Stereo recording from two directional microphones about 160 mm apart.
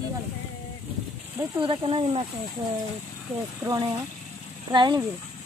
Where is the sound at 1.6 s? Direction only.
35° right (ahead or behind).